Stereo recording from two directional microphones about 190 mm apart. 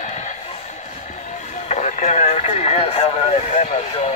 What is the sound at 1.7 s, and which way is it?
Radio, 40° left (ahead or behind).